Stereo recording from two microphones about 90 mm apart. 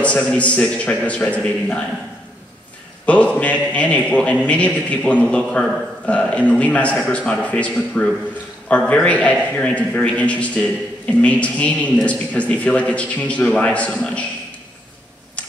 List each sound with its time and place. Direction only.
0.0 s a man's voice: 15° left (ahead or behind)
3.1 s a man's voice: 15° left (ahead or behind)